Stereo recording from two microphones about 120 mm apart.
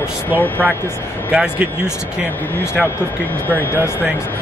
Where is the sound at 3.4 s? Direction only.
15° left (ahead or behind).